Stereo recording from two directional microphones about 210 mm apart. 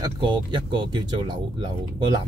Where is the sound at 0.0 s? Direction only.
20° right (ahead or behind).